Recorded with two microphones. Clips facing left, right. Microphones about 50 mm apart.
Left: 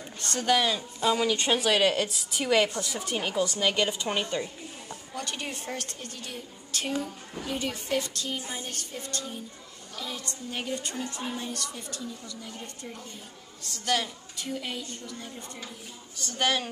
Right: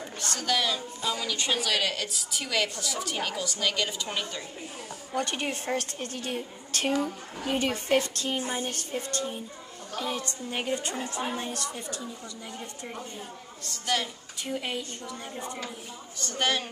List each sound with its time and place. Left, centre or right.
0.4 s a woman's voice: centre
1.1 s a woman's voice: left
5.1 s a woman's voice: right
10.5 s a woman's voice: right
13.6 s a woman's voice: centre
14.4 s a woman's voice: right
16.2 s a woman's voice: centre